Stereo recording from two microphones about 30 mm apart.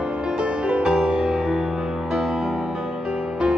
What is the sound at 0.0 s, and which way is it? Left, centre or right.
Music, right.